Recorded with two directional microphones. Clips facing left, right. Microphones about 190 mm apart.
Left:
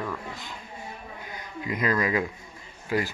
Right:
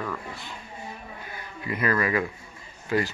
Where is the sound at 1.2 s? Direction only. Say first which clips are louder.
Left 1 dB; 15° left (ahead or behind).